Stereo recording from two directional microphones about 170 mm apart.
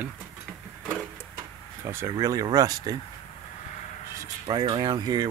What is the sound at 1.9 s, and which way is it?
Speech, 15° right (ahead or behind).